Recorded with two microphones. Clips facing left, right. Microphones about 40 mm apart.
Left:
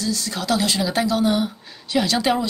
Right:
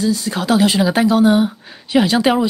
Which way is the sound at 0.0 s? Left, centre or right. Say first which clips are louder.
Right 7 dB; right.